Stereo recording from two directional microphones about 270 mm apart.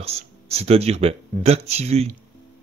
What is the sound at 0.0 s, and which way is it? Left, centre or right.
Speech, right.